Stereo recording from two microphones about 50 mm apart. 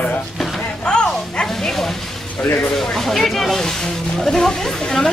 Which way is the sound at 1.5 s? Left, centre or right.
Centre.